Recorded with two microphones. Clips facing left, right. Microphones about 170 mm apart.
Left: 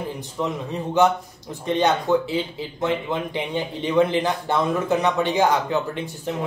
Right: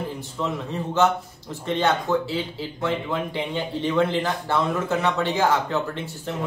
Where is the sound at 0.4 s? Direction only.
15° left (ahead or behind).